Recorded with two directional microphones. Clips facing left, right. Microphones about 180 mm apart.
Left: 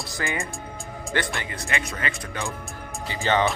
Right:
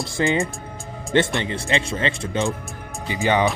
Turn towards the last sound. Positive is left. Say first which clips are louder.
# right 3 dB
turn(degrees=-15)  # may be behind; listen again after turning